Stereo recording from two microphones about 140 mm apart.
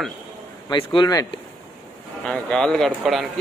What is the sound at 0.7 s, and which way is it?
Speech, 35° left (ahead or behind).